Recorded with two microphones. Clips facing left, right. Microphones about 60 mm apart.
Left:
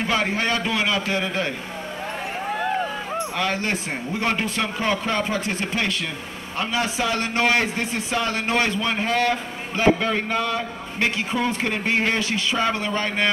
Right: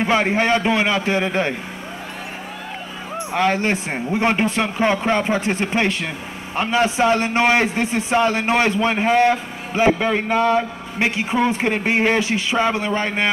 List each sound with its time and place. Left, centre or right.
0.0 s a man's voice: right
3.2 s a man's voice: right